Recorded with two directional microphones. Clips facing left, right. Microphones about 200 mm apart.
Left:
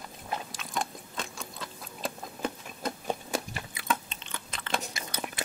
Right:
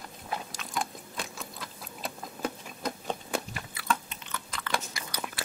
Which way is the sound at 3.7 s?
25° left (ahead or behind).